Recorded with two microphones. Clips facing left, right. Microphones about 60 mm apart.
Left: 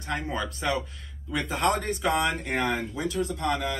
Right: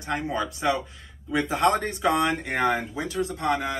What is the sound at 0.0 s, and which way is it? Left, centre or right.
Speech, centre.